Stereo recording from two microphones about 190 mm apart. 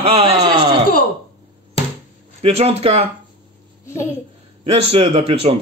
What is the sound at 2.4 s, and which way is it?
Speech, 30° right (ahead or behind).